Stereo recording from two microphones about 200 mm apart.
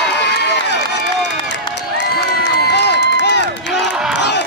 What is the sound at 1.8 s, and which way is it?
Crowd, 60° left (ahead or behind).